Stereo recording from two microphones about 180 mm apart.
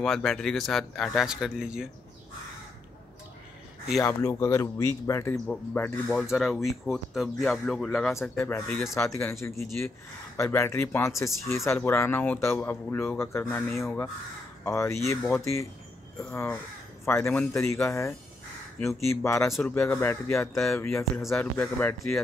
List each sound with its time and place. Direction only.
0.0 s speech: centre (ahead or behind)
4.0 s speech: 15° left (ahead or behind)
6.3 s speech: centre (ahead or behind)
8.4 s speech: 15° left (ahead or behind)